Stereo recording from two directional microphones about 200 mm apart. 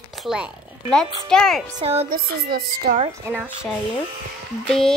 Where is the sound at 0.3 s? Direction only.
Centre (ahead or behind).